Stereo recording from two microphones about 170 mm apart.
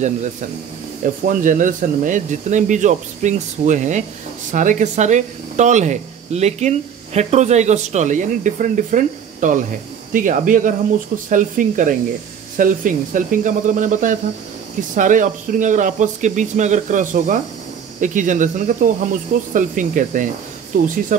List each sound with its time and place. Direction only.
0.0 s speech: 45° right (ahead or behind)